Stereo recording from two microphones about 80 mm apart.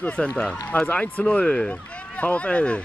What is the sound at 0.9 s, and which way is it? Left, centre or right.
Speech, centre.